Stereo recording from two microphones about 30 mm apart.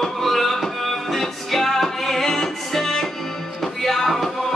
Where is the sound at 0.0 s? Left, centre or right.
Centre.